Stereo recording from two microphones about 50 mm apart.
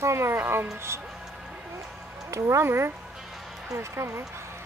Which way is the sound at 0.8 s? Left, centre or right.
Right.